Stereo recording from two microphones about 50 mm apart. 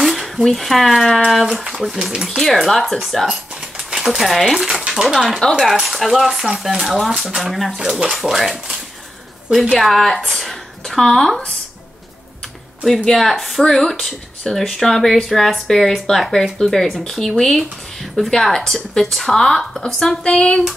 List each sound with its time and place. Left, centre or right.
0.0 s speech: centre
1.5 s speech: centre
2.2 s speech: centre
7.7 s speech: centre
10.3 s a sound: centre
12.9 s speech: centre
13.2 s speech: centre
20.2 s a sound: left